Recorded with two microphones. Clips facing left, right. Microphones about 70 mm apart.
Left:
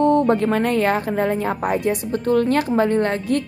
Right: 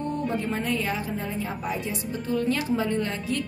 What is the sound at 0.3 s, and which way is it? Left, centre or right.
A woman's voice, left.